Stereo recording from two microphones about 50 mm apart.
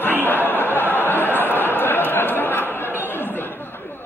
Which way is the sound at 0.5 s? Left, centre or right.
Left.